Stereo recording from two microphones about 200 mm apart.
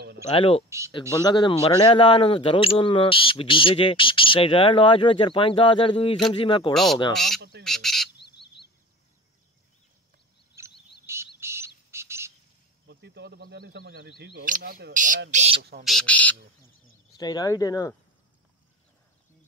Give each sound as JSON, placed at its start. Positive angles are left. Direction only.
{"t": 0.3, "sound": "speech", "side_deg": 30}
{"t": 0.7, "sound": "speech", "side_deg": -15}
{"t": 1.2, "sound": "speech", "side_deg": 20}
{"t": 6.7, "sound": "speech", "side_deg": 0}
{"t": 8.2, "sound": "bird", "side_deg": 55}
{"t": 10.6, "sound": "frog", "side_deg": -15}
{"t": 11.1, "sound": "bird", "side_deg": -15}
{"t": 12.8, "sound": "speech", "side_deg": -55}
{"t": 15.3, "sound": "speech", "side_deg": -30}
{"t": 15.8, "sound": "speech", "side_deg": 0}
{"t": 17.2, "sound": "speech", "side_deg": 20}